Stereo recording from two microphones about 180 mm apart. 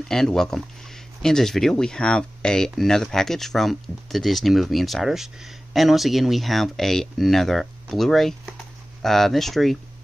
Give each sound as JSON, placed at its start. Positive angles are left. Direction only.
{"t": 0.1, "sound": "speech", "side_deg": 5}